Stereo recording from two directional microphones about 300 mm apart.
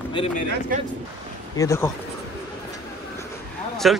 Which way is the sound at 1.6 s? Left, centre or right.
Centre.